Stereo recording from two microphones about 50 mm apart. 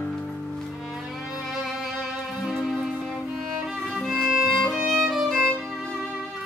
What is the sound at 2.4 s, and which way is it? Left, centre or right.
Music, centre.